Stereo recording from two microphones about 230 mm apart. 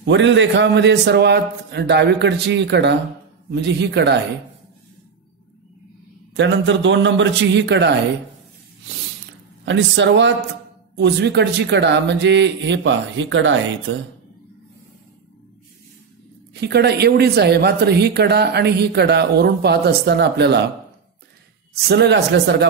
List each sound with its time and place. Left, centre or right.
0.0 s speech: right
6.3 s speech: right
9.7 s speech: right
16.5 s speech: right
21.8 s speech: right